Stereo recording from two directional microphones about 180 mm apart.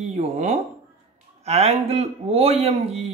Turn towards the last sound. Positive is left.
turn(degrees=-35)  # may be behind; listen again after turning